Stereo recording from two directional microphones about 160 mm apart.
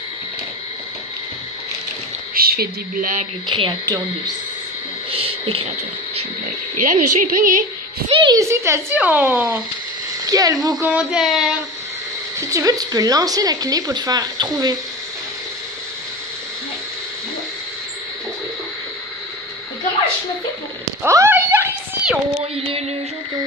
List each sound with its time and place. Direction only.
2.3 s speech: 70° right (ahead or behind)
3.5 s speech: 30° right (ahead or behind)
5.1 s a sound: 35° right (ahead or behind)
6.8 s a woman's voice: 55° right (ahead or behind)
8.1 s a woman's voice: 30° right (ahead or behind)
8.4 s speech: 15° right (ahead or behind)
10.2 s speech: 20° right (ahead or behind)
10.8 s speech: 5° right (ahead or behind)
12.4 s speech: 20° right (ahead or behind)
21.0 s a sound: 15° right (ahead or behind)
22.6 s music: 35° right (ahead or behind)